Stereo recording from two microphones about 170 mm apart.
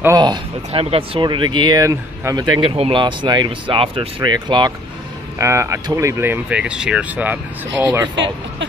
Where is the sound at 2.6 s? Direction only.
30° right (ahead or behind); by 7.3 s 10° right (ahead or behind).